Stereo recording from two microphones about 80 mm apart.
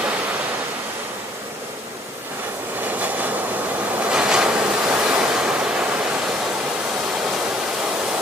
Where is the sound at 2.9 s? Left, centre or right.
Centre.